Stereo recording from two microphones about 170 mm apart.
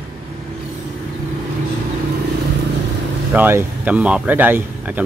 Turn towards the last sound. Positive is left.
turn(degrees=-10)  # may be behind; listen again after turning